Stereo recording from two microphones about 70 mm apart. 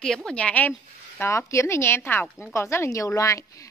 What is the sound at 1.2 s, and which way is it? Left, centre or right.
A woman's voice, left.